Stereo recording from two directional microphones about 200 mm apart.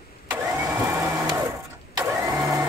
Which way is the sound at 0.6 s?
15° right (ahead or behind).